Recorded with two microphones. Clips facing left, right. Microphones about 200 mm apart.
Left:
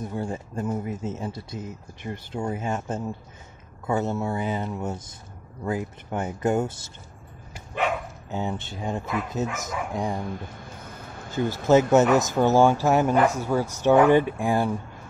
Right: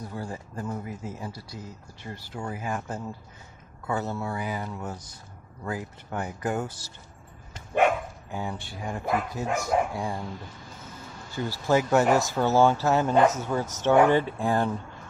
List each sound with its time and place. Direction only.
0.0 s speech: 20° left (ahead or behind)
8.3 s speech: 25° left (ahead or behind)
10.2 s speech: 55° left (ahead or behind)
11.3 s speech: 20° left (ahead or behind)